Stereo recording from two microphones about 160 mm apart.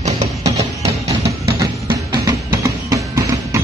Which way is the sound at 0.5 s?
20° right (ahead or behind).